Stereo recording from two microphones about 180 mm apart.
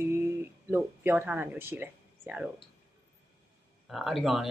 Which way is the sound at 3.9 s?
Centre (ahead or behind).